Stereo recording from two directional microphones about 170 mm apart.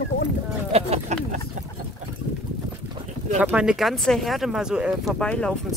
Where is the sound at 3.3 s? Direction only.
5° right (ahead or behind).